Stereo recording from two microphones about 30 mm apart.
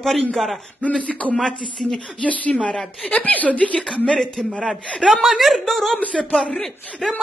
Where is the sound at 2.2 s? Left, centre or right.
Left.